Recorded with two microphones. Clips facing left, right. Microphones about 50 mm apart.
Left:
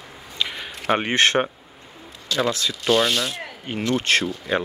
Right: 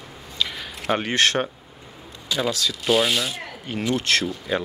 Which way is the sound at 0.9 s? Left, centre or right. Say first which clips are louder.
Left 2 dB; left.